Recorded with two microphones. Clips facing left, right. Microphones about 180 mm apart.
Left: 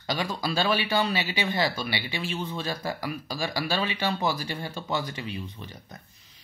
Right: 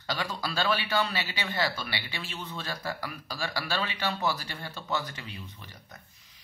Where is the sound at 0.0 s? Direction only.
15° left (ahead or behind).